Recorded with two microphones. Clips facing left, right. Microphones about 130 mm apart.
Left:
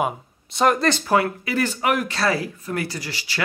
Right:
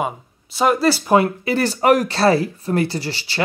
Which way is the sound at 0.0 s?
5° right (ahead or behind).